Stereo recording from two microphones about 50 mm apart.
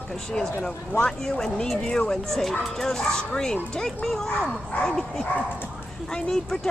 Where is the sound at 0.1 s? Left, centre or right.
Centre.